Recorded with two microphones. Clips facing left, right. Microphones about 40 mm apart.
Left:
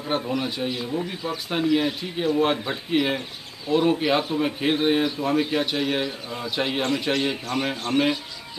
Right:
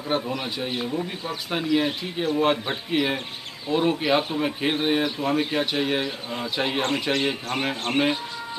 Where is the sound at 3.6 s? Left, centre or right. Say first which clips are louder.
Left 2 dB; centre.